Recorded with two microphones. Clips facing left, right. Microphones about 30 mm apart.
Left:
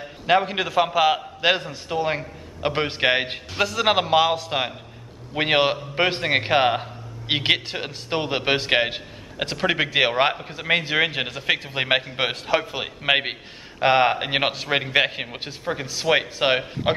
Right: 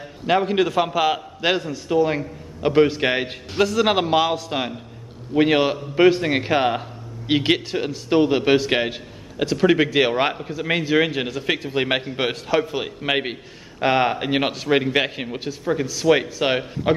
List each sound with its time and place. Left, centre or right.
0.0 s a man's voice: centre
3.5 s a man's voice: centre
5.3 s a man's voice: left